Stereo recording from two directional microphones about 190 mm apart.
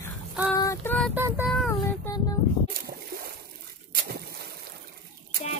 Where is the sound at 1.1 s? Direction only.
10° right (ahead or behind).